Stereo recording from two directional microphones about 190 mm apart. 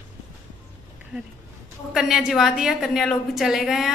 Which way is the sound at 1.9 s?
5° right (ahead or behind).